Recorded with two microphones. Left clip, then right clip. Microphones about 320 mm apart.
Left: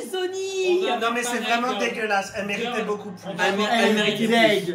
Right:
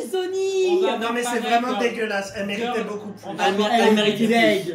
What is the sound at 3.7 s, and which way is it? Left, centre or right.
Speech, centre.